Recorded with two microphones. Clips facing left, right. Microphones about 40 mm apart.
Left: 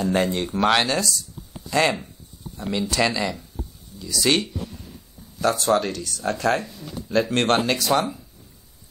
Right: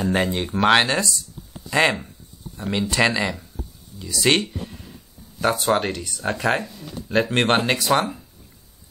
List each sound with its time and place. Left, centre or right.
0.0 s speech: centre; by 4.5 s right
5.5 s speech: centre